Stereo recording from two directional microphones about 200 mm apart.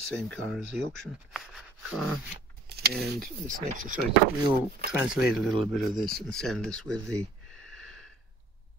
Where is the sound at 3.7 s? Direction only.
40° right (ahead or behind).